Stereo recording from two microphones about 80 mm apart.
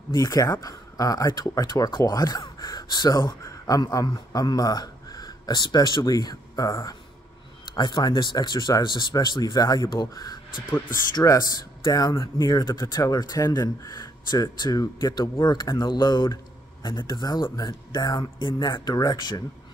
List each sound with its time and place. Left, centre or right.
0.1 s speech: left
3.2 s a man's voice: left
7.7 s speech: left
12.4 s speech: left
12.8 s speech: left